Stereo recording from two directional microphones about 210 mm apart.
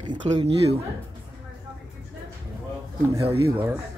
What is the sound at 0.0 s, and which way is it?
Speech, 20° right (ahead or behind).